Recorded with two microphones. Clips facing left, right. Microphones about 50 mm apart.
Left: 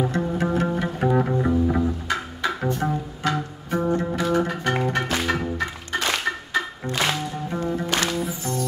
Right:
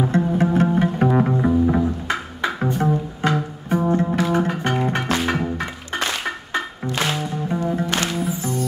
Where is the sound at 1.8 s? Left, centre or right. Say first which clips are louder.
Right 2 dB; right.